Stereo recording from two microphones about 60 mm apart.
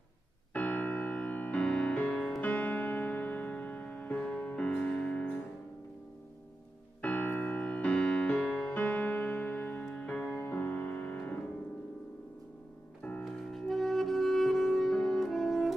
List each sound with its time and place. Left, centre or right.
0.5 s music: left
2.4 s music: left
7.0 s music: left
10.5 s piano: left
13.2 s music: centre